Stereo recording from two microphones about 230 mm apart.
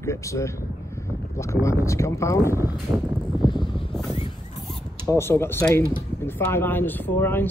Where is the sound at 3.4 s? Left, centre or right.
Centre.